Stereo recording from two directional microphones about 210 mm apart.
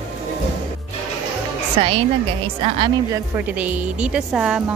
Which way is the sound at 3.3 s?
5° right (ahead or behind).